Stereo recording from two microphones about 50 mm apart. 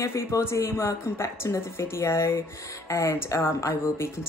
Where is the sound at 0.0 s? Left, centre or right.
Left.